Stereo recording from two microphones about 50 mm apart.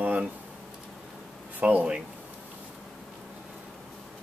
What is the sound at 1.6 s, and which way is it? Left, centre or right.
Speech, right.